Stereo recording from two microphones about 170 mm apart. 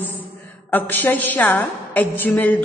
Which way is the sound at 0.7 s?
10° left (ahead or behind).